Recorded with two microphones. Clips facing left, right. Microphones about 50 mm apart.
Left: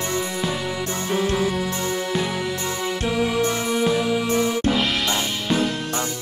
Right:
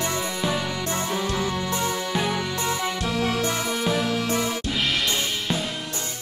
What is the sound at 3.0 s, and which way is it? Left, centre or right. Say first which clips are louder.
Music: left 5 dB; centre.